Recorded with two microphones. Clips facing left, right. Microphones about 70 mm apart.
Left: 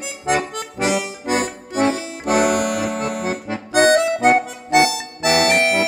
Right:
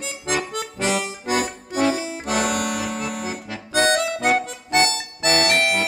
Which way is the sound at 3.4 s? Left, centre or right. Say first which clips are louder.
Left 5 dB; left.